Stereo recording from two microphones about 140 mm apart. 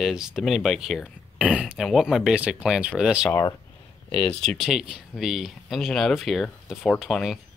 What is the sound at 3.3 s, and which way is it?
Speech, 20° left (ahead or behind).